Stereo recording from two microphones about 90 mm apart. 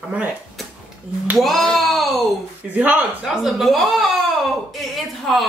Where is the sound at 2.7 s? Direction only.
20° right (ahead or behind).